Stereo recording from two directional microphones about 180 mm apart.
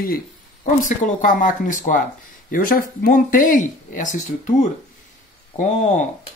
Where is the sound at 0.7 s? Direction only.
45° left (ahead or behind).